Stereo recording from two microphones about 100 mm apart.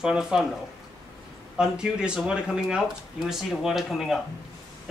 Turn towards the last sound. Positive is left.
turn(degrees=-5)  # may be behind; listen again after turning